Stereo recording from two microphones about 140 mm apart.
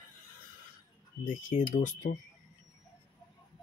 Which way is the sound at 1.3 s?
65° left (ahead or behind).